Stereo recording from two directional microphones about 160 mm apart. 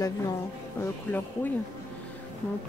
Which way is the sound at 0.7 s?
10° left (ahead or behind).